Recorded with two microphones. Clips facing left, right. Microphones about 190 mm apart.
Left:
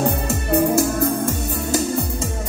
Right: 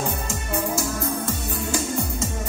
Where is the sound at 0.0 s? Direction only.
65° left (ahead or behind).